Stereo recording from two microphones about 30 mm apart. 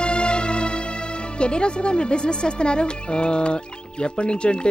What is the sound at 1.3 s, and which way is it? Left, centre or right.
Speech, left.